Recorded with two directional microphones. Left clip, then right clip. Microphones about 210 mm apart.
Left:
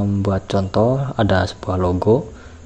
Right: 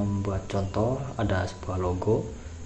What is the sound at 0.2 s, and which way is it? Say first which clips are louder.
Speech: left 10 dB; 35° left (ahead or behind).